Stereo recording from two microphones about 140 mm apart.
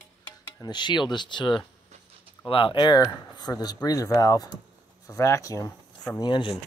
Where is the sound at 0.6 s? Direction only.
30° left (ahead or behind).